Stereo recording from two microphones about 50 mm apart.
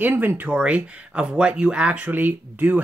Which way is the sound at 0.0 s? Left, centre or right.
Right.